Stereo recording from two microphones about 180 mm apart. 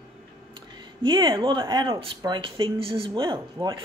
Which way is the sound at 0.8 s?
25° right (ahead or behind).